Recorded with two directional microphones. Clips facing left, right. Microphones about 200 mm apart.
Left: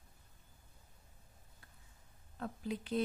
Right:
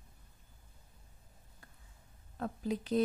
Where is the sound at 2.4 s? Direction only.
40° right (ahead or behind).